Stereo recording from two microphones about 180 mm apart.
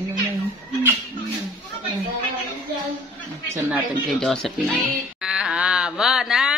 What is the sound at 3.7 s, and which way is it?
Speech, centre (ahead or behind).